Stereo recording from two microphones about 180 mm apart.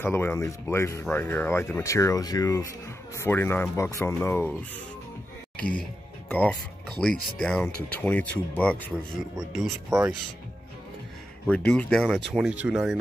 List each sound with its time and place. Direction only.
0.0 s speech: 15° left (ahead or behind)
6.2 s speech: 10° left (ahead or behind)
11.4 s speech: 5° left (ahead or behind)